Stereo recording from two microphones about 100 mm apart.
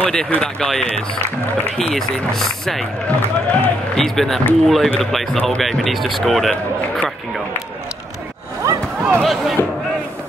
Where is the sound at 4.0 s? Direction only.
5° left (ahead or behind).